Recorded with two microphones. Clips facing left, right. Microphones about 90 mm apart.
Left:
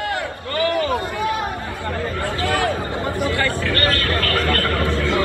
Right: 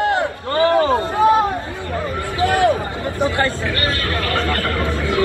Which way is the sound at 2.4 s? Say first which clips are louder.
Right 7 dB; 20° right (ahead or behind).